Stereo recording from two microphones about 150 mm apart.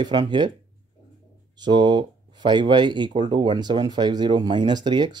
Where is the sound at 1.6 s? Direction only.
30° right (ahead or behind).